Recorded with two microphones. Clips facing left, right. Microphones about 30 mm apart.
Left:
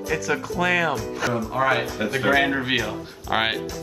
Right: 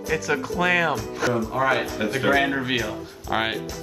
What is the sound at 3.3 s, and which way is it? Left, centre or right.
Speech, centre.